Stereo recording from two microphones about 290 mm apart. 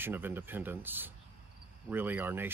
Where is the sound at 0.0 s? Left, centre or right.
Centre.